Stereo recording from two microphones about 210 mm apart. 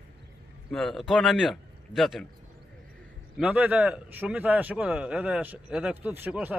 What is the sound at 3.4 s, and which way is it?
A man's voice, 5° right (ahead or behind).